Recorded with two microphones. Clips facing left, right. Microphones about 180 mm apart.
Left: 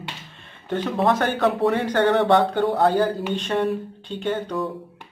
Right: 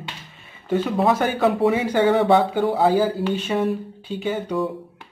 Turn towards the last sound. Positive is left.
turn(degrees=-5)  # may be behind; listen again after turning